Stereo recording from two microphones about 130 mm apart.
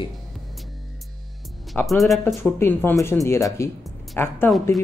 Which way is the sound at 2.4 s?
15° left (ahead or behind).